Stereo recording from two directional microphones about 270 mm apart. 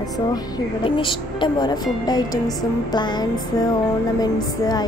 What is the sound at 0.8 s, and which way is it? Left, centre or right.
Speech, centre.